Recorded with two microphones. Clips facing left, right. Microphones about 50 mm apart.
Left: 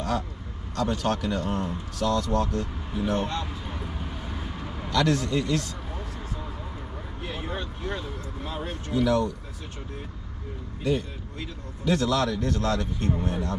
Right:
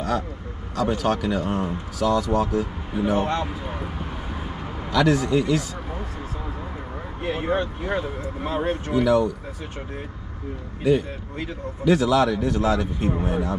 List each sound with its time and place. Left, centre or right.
0.7 s speech: centre
3.3 s a sound: right
4.9 s speech: centre
7.2 s speech: right
8.9 s speech: centre
10.8 s a man's voice: centre